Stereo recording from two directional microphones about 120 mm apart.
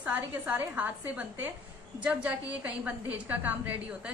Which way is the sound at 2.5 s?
10° right (ahead or behind).